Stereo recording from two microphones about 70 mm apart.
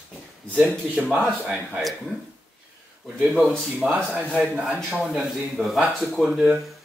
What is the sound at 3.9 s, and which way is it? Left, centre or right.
Speech, centre.